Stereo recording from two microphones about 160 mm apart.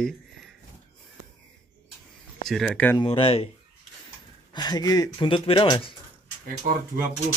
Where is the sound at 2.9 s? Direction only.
35° left (ahead or behind).